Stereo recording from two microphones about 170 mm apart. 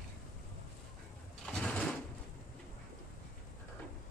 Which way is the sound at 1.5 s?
5° left (ahead or behind).